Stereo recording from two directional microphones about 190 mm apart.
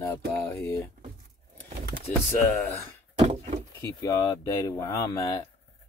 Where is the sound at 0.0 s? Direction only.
15° left (ahead or behind).